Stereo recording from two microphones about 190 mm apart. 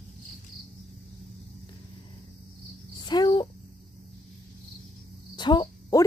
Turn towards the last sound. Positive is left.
turn(degrees=25)  # may be behind; listen again after turning